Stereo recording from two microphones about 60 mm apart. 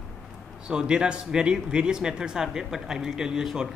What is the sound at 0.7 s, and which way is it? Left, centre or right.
Speech, centre.